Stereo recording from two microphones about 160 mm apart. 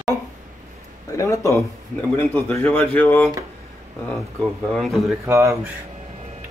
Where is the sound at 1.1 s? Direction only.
20° left (ahead or behind).